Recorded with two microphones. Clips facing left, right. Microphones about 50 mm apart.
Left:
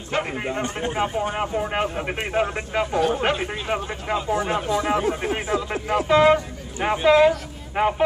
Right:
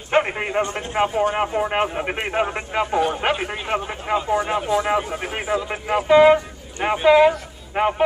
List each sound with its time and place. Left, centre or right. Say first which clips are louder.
0.1 s a man's voice: right 6 dB; right; by 7.9 s centre